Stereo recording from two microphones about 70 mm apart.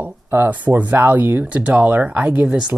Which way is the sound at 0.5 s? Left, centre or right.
Right.